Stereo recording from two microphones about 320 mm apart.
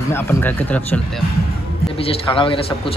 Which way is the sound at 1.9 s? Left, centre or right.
Centre.